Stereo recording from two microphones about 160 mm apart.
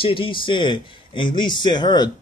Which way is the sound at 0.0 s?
35° left (ahead or behind).